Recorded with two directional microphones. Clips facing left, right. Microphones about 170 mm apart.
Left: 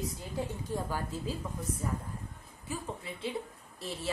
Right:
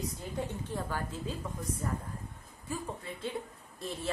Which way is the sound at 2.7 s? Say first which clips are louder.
Even; centre (ahead or behind).